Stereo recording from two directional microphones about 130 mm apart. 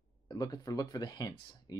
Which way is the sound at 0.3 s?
30° left (ahead or behind).